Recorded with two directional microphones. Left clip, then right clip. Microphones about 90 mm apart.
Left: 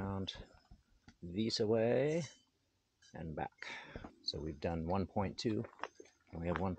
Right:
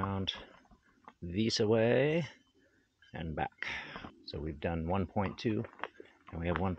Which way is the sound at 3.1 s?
20° right (ahead or behind).